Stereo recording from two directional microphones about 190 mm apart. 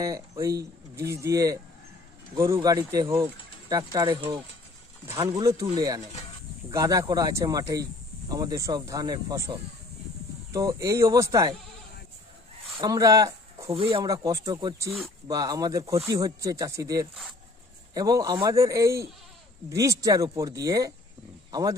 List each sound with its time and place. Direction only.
0.0 s speech: 15° right (ahead or behind)
12.7 s speech: 20° right (ahead or behind)